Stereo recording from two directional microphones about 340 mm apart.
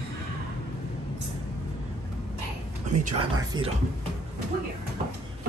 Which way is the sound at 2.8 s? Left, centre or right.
Right.